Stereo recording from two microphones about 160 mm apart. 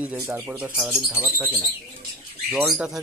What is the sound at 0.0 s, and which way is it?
Speech, 10° right (ahead or behind).